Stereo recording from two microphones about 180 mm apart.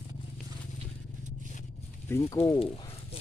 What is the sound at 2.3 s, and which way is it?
Speech, 15° left (ahead or behind).